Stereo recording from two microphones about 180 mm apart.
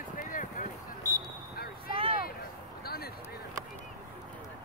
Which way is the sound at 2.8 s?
60° left (ahead or behind).